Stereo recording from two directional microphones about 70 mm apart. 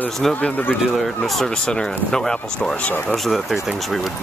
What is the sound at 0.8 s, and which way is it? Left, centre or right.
Speech, centre.